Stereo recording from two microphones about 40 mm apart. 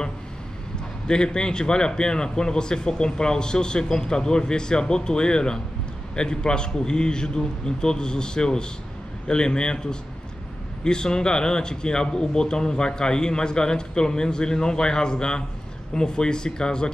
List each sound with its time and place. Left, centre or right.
1.0 s speech: left